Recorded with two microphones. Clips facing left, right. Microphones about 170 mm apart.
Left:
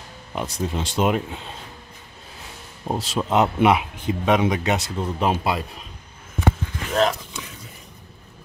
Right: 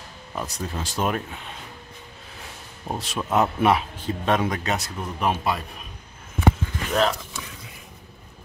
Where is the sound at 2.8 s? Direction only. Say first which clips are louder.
Left 4 dB; 30° left (ahead or behind).